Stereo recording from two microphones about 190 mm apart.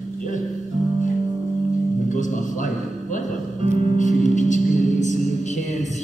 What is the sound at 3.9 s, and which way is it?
Music, 40° left (ahead or behind).